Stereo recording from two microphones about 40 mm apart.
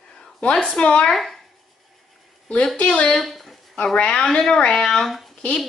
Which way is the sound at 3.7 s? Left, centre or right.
Left.